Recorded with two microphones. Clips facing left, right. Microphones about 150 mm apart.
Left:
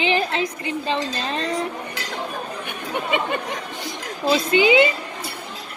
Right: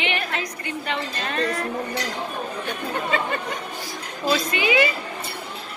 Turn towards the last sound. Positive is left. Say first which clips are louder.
# left 5 dB
turn(degrees=25)  # may be behind; listen again after turning